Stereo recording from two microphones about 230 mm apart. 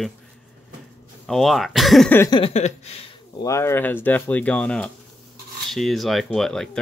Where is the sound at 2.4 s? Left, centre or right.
Left.